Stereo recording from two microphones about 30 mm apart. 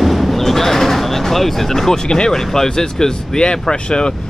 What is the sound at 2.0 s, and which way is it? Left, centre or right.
Speech, left.